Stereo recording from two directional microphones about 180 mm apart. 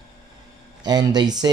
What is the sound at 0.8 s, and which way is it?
Speech, 20° right (ahead or behind).